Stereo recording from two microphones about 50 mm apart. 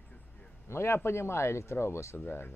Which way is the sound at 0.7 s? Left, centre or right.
Left.